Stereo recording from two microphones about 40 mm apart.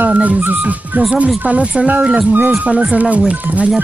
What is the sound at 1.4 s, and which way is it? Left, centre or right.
Speech, right.